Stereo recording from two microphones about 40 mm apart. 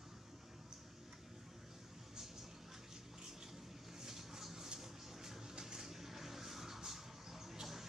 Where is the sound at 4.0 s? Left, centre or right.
Centre.